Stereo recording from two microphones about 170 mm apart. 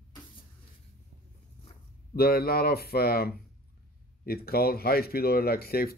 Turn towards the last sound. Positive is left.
turn(degrees=65)  # may be behind; listen again after turning